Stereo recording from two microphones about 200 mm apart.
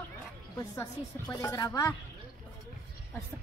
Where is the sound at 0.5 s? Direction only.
20° left (ahead or behind).